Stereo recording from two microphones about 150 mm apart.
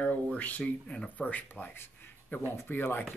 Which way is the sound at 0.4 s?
10° left (ahead or behind).